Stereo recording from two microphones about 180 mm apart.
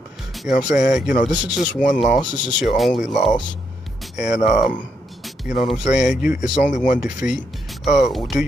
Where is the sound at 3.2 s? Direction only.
35° left (ahead or behind).